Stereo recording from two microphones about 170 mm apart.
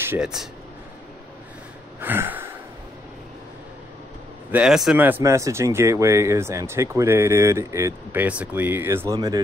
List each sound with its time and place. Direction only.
0.0 s speech: 15° right (ahead or behind)
2.0 s gasp: 10° right (ahead or behind)
4.5 s speech: 5° right (ahead or behind); by 9.4 s 20° right (ahead or behind)